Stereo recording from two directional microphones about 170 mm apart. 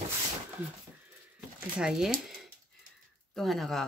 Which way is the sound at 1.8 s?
5° right (ahead or behind).